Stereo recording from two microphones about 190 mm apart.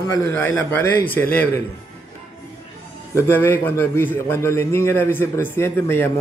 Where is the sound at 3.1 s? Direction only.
10° left (ahead or behind).